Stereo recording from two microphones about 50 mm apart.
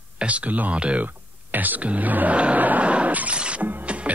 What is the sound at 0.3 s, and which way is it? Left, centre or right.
Speech, right.